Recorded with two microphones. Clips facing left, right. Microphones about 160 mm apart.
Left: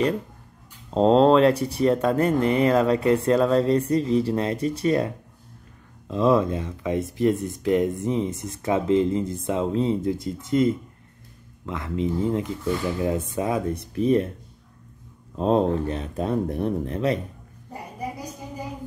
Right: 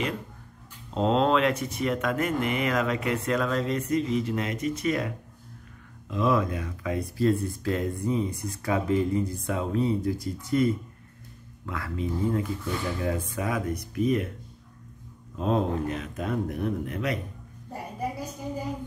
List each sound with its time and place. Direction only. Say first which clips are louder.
0.8 s speech: left 7 dB; 35° left (ahead or behind)
15.3 s speech: left 5 dB; 35° left (ahead or behind)